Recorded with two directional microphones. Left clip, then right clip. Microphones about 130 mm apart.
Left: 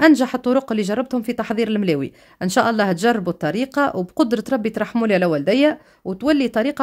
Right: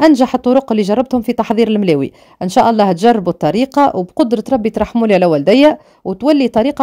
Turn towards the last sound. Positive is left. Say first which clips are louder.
# right 6 dB
turn(degrees=-25)  # may be behind; listen again after turning